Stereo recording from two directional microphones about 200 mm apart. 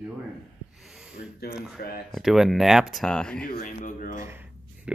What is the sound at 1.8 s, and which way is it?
Speech, 50° left (ahead or behind).